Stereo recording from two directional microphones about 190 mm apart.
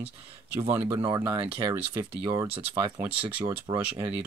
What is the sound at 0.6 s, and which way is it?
Speech, 10° right (ahead or behind).